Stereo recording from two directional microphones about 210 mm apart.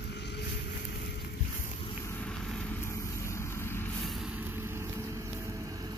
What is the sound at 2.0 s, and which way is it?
Vehicle, 10° left (ahead or behind).